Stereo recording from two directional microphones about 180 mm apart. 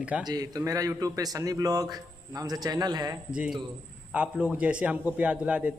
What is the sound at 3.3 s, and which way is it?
A man's voice, 5° right (ahead or behind).